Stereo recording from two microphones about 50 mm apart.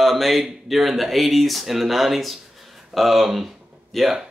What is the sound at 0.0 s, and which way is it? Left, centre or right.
Speech, centre.